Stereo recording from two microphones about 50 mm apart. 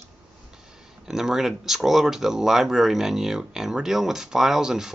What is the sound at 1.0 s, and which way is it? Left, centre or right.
Speech, centre.